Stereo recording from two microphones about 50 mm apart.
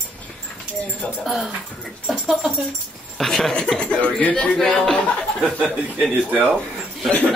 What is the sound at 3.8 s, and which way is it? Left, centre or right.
Speech, left.